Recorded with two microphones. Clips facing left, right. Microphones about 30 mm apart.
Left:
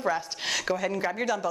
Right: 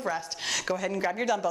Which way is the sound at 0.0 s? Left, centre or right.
Centre.